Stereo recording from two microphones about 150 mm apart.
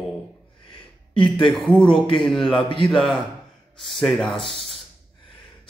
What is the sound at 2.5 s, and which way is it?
Speech, 35° left (ahead or behind).